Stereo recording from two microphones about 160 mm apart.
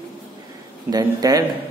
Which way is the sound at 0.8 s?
25° right (ahead or behind).